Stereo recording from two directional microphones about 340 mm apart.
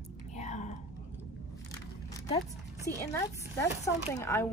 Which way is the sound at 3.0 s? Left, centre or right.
Centre.